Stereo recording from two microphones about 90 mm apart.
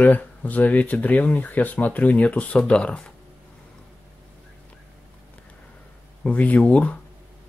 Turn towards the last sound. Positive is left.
turn(degrees=15)  # may be behind; listen again after turning